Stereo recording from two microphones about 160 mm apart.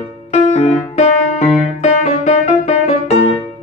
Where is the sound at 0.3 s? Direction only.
45° left (ahead or behind).